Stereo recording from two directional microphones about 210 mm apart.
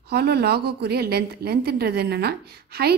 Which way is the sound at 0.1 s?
50° right (ahead or behind).